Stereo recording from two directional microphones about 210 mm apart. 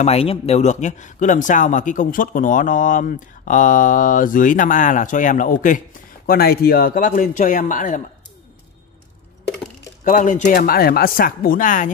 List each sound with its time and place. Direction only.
0.0 s a man's voice: 30° left (ahead or behind)
10.0 s a man's voice: 35° left (ahead or behind)